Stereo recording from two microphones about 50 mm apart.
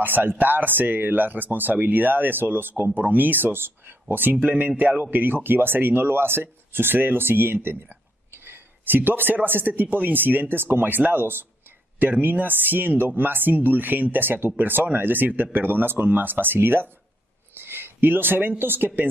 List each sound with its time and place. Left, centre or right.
0.0 s speech: right